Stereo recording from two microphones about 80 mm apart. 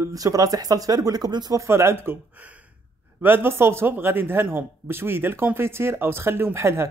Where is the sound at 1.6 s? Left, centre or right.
Right.